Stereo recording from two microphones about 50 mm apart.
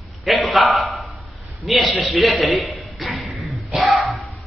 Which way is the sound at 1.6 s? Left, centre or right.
Centre.